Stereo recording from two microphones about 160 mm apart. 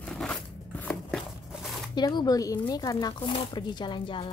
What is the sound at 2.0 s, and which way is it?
Speech, 25° left (ahead or behind).